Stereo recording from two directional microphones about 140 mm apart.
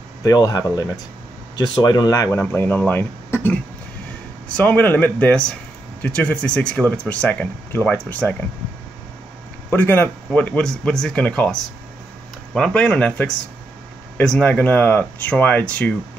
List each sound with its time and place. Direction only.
0.2 s speech: 25° left (ahead or behind)
9.7 s speech: 15° left (ahead or behind)